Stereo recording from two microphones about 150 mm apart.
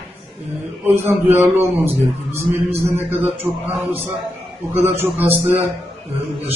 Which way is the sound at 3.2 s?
10° right (ahead or behind).